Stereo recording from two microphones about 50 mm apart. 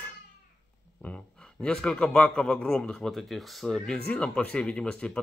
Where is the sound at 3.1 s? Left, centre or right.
Centre.